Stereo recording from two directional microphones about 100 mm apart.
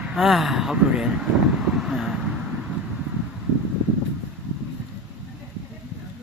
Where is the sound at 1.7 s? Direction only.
5° right (ahead or behind).